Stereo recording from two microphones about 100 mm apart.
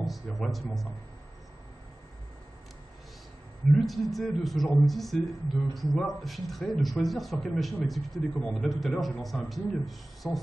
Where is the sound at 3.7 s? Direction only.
Centre (ahead or behind).